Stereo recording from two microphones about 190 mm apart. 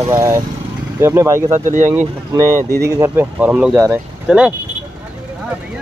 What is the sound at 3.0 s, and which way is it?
Speech, 10° right (ahead or behind).